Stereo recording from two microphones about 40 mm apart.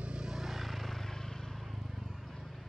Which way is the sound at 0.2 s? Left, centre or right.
Centre.